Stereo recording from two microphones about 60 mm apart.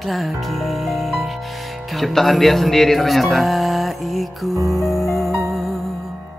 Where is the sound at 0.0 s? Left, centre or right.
Centre.